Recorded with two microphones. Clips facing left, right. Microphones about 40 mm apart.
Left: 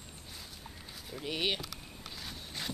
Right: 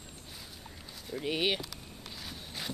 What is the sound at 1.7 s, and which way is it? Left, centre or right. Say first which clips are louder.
Vehicle: even; centre.